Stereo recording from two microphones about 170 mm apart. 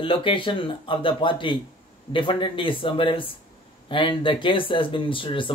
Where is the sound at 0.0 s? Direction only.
30° left (ahead or behind).